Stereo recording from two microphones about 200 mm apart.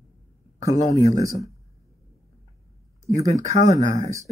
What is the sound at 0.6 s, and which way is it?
Speech, 15° right (ahead or behind).